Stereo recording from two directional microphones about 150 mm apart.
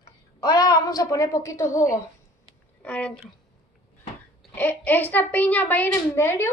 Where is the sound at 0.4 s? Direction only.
25° left (ahead or behind).